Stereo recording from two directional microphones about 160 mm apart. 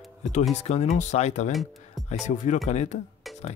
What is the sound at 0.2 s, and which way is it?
Speech, 45° left (ahead or behind).